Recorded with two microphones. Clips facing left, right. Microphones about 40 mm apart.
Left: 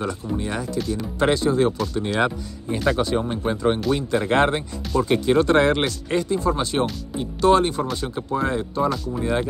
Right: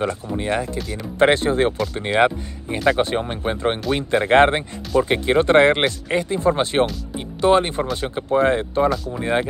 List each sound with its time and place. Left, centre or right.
0.0 s speech: right
0.7 s speech: centre
1.2 s speech: right
6.3 s speech: right
7.2 s speech: right
8.8 s speech: centre
9.2 s speech: right